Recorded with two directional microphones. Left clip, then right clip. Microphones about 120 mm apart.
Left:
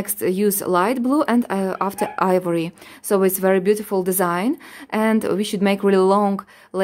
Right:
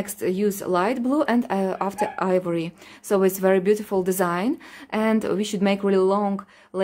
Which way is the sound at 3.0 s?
25° left (ahead or behind).